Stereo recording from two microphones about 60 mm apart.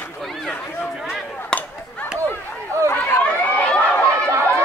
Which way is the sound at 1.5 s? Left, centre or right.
Centre.